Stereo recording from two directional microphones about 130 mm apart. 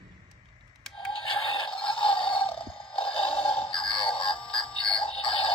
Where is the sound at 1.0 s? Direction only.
40° left (ahead or behind).